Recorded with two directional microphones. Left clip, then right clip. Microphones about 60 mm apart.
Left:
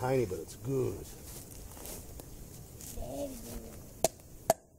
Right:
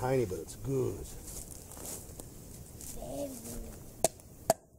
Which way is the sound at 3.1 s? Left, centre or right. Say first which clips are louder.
Even; centre.